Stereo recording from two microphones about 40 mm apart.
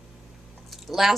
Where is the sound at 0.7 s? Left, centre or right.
Centre.